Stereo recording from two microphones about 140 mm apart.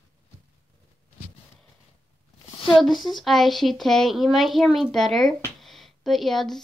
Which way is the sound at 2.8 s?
Centre (ahead or behind).